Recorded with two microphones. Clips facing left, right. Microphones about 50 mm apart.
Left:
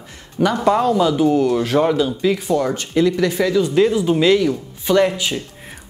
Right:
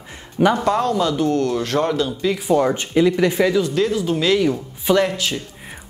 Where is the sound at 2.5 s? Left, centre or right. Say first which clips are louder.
Right 2 dB; centre.